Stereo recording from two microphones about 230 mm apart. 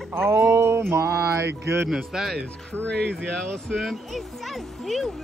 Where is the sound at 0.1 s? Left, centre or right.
Centre.